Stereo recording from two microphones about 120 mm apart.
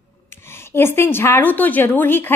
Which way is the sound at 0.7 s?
20° left (ahead or behind).